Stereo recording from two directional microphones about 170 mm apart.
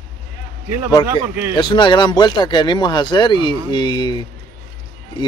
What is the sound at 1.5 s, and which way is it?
Speech, 25° left (ahead or behind).